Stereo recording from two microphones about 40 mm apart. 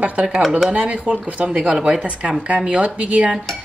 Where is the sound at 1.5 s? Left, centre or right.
Centre.